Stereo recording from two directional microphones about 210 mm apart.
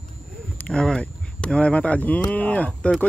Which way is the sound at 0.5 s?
5° left (ahead or behind).